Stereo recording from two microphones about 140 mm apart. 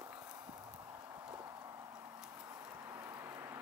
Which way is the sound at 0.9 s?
20° right (ahead or behind).